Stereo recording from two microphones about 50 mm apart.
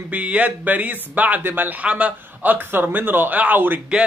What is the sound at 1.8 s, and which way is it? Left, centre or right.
Speech, right.